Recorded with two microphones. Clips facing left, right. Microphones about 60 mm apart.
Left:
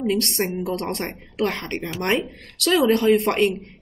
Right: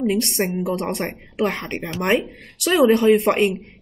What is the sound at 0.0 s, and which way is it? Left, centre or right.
Speech, centre.